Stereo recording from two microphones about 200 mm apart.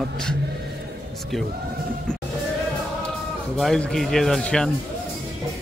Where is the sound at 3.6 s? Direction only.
Centre (ahead or behind).